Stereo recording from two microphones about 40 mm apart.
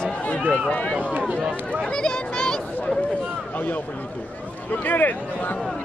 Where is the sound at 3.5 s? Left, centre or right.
Left.